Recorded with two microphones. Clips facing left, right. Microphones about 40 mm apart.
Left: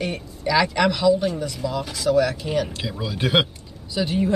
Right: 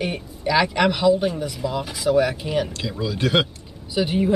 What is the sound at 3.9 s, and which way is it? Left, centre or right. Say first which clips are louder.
Speech: right 2 dB; centre.